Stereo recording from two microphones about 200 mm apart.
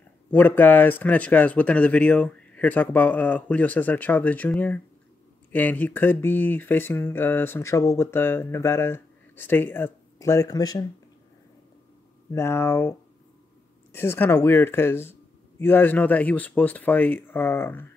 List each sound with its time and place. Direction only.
0.3 s speech: 10° left (ahead or behind)
12.3 s speech: 15° left (ahead or behind)
13.9 s speech: 10° left (ahead or behind)